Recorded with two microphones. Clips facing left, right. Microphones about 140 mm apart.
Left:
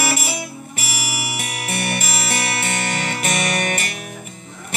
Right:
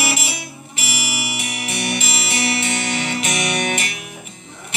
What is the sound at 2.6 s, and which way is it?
Music, 50° left (ahead or behind).